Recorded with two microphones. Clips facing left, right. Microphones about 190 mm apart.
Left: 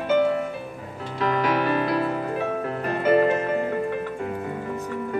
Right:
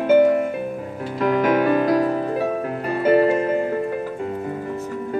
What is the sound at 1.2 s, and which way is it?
Music, 50° right (ahead or behind).